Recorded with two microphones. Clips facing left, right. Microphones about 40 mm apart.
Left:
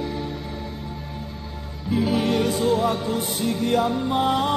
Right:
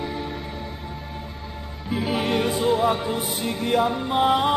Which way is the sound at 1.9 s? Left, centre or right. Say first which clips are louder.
Left 2 dB; centre.